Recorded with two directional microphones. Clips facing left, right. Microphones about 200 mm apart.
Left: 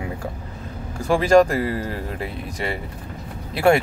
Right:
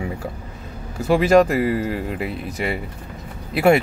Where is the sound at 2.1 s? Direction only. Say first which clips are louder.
Right 3 dB; 40° left (ahead or behind).